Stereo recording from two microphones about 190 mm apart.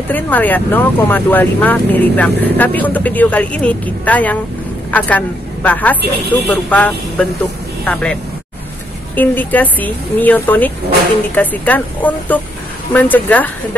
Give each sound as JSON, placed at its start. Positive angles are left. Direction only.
{"t": 0.1, "sound": "speech", "side_deg": 10}